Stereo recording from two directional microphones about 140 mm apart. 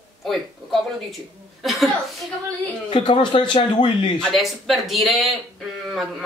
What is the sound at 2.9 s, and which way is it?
Speech, 35° left (ahead or behind).